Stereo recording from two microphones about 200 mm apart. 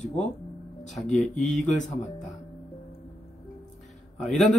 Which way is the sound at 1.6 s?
40° left (ahead or behind).